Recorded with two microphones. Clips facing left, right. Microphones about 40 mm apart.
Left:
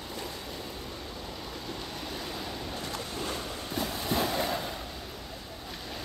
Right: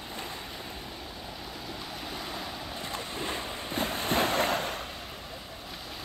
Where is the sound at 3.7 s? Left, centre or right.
Right.